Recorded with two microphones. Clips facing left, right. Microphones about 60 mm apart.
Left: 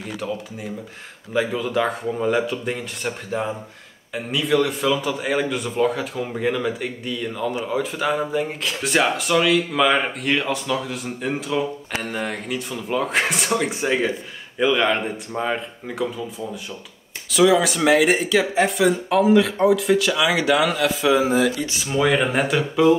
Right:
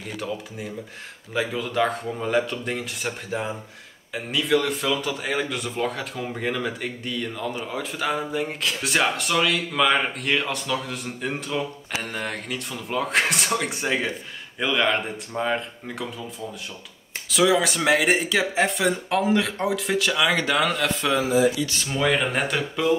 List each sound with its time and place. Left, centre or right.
1.3 s a man's voice: centre
21.4 s speech: left
21.6 s a man's voice: centre